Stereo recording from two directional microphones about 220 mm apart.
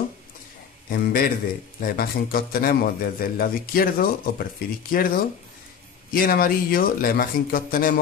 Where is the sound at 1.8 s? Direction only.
40° left (ahead or behind).